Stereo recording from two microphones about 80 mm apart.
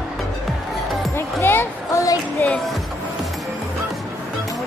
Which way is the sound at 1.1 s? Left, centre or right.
Left.